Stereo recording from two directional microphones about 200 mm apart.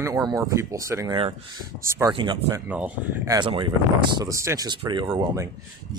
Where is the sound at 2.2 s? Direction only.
20° right (ahead or behind).